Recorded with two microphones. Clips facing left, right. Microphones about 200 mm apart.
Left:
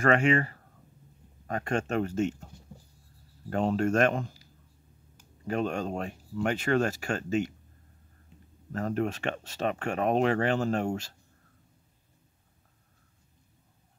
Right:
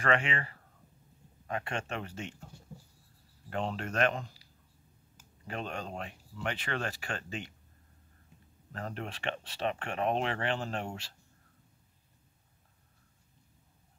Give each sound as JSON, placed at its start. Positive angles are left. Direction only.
{"t": 0.0, "sound": "speech", "side_deg": 45}
{"t": 3.4, "sound": "speech", "side_deg": 45}
{"t": 5.5, "sound": "speech", "side_deg": 45}
{"t": 8.7, "sound": "speech", "side_deg": 45}